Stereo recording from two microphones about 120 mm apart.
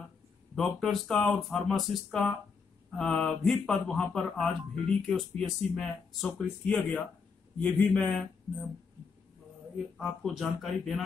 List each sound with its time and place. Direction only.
0.6 s speech: 5° left (ahead or behind)
4.6 s speech: 45° right (ahead or behind)
5.0 s speech: 5° left (ahead or behind)
9.9 s speech: centre (ahead or behind)